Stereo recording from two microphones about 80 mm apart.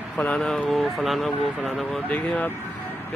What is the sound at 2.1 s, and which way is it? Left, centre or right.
Speech, centre.